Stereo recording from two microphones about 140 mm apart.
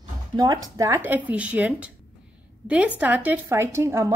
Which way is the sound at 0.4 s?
25° right (ahead or behind).